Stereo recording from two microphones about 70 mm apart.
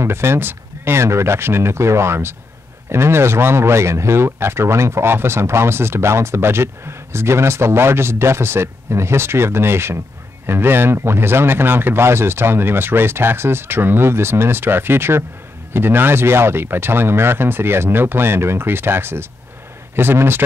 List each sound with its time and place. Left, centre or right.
0.0 s speech: right